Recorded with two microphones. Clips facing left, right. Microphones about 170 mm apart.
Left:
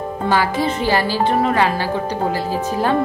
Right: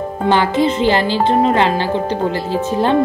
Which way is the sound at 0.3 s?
20° right (ahead or behind).